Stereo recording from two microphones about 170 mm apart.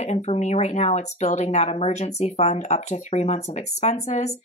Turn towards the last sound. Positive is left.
turn(degrees=40)  # may be behind; listen again after turning